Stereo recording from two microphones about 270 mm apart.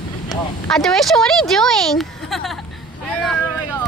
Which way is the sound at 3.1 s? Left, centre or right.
Centre.